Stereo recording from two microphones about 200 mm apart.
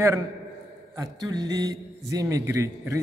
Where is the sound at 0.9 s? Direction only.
15° right (ahead or behind).